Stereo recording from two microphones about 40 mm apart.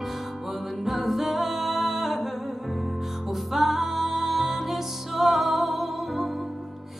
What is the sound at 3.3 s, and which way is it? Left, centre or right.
Music, centre.